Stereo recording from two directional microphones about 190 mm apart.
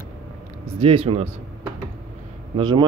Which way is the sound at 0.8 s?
30° right (ahead or behind).